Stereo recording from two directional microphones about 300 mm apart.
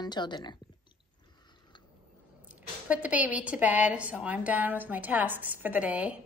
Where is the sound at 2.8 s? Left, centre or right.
Centre.